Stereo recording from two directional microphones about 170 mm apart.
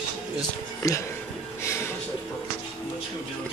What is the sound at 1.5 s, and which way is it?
Music, 15° left (ahead or behind).